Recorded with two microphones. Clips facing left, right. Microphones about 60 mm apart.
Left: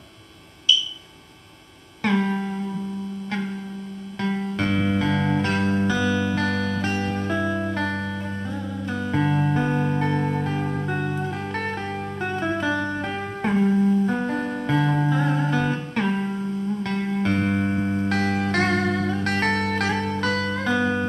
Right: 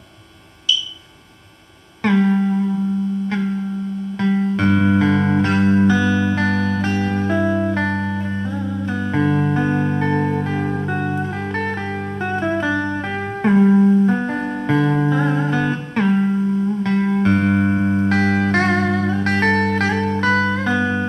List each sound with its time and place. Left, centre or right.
2.0 s music: right
4.2 s music: right
7.3 s music: centre
9.1 s music: right
10.2 s music: right
12.3 s music: right
13.7 s music: right
16.0 s music: centre; by 21.1 s right